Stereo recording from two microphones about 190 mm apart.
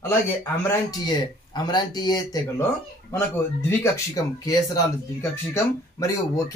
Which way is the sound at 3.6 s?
15° left (ahead or behind).